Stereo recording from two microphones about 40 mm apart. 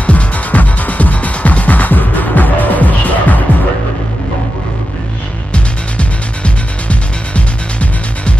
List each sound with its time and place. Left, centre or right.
0.0 s music: left
5.5 s music: left